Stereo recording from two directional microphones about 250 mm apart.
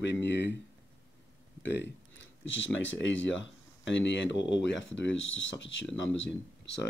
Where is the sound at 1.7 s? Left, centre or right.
Left.